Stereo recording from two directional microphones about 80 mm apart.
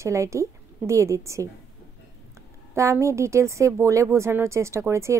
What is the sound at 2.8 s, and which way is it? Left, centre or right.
A woman's voice, right.